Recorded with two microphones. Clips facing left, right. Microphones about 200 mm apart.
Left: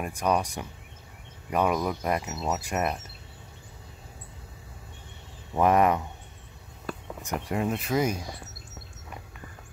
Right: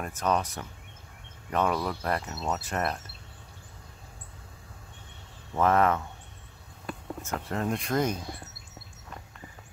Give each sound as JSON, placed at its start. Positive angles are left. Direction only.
{"t": 0.0, "sound": "speech", "side_deg": 10}
{"t": 5.5, "sound": "speech", "side_deg": 15}
{"t": 7.2, "sound": "speech", "side_deg": 15}